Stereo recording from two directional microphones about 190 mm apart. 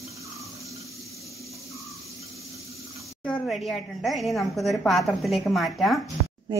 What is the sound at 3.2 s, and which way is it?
A woman's voice, 5° left (ahead or behind).